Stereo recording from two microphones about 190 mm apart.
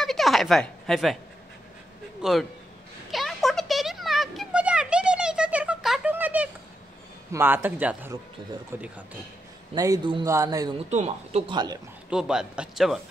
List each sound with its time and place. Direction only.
0.0 s a sound: centre (ahead or behind)
2.2 s a man's voice: 5° right (ahead or behind)
3.1 s a sound: centre (ahead or behind)
7.3 s speech: 10° right (ahead or behind)
9.8 s a man's voice: 20° right (ahead or behind)
10.9 s speech: 35° right (ahead or behind)
12.1 s a man's voice: 5° right (ahead or behind)